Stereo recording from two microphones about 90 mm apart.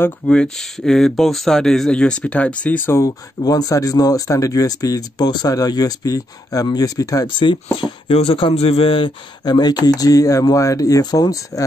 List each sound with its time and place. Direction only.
0.3 s speech: 5° left (ahead or behind)
2.9 s speech: 40° left (ahead or behind)
7.2 s speech: 65° left (ahead or behind)
7.7 s speech: 80° left
9.4 s speech: 50° left (ahead or behind)